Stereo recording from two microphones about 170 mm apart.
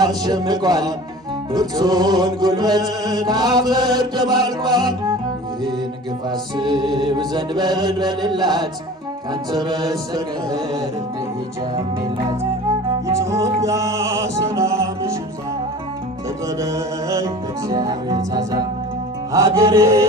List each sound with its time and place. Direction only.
0.0 s music: 25° right (ahead or behind)
6.5 s music: 25° right (ahead or behind)
12.6 s music: 15° right (ahead or behind)
16.5 s music: 20° right (ahead or behind)